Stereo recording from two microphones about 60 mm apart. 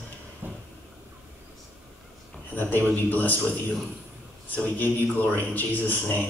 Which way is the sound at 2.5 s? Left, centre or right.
Left.